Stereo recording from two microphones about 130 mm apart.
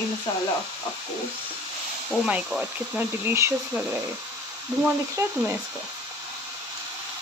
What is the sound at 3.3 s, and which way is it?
Speech, 20° right (ahead or behind).